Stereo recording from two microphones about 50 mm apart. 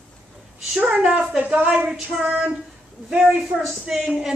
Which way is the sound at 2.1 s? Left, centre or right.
Centre.